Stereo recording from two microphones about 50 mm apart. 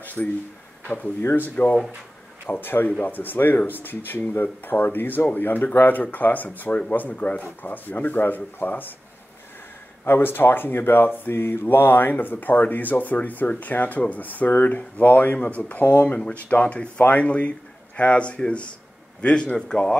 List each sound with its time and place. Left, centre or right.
0.0 s a sound: left
1.2 s speech: left
10.0 s a man's voice: left; by 20.0 s centre